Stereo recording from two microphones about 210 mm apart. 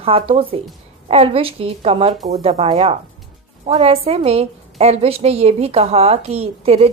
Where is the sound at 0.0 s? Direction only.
25° right (ahead or behind).